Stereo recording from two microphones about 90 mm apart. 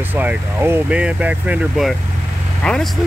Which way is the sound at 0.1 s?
20° right (ahead or behind).